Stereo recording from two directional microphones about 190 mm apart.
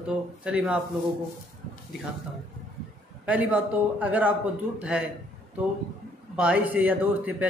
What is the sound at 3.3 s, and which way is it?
A man's voice, 10° right (ahead or behind).